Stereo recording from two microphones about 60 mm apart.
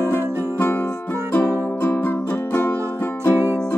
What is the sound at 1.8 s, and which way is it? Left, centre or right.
Music, left.